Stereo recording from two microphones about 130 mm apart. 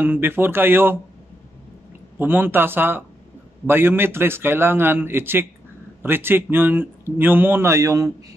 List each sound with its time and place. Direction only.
0.0 s speech: 15° right (ahead or behind)
2.1 s speech: 15° right (ahead or behind)